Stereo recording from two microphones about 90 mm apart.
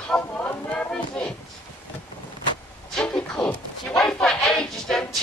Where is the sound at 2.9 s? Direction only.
10° left (ahead or behind).